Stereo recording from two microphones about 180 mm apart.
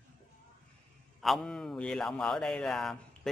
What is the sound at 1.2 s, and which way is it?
Speech, centre (ahead or behind).